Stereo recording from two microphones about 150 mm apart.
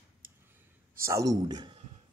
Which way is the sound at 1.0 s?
20° right (ahead or behind).